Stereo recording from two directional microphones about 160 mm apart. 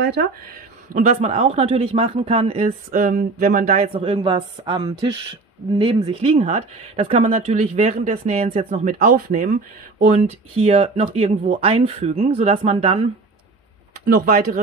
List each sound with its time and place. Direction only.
0.9 s speech: 45° right (ahead or behind)
3.9 s speech: 35° right (ahead or behind)
8.7 s speech: 55° right (ahead or behind)
14.0 s speech: 55° right (ahead or behind)